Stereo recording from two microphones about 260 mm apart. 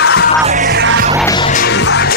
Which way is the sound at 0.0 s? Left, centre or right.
Left.